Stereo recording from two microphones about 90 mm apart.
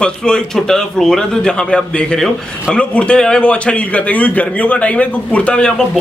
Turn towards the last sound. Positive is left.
turn(degrees=10)  # may be behind; listen again after turning